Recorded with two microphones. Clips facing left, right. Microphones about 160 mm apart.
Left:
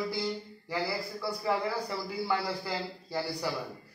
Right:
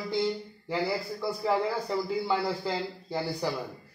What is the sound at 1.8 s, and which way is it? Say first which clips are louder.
A man's voice: right 4 dB; 20° right (ahead or behind).